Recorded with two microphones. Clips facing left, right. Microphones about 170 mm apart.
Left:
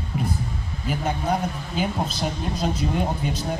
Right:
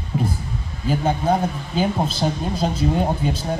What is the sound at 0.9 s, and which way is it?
A woman's voice, 30° right (ahead or behind).